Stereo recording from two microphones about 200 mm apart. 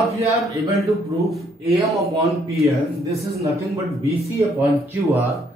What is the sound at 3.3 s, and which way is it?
A man's voice, 15° right (ahead or behind).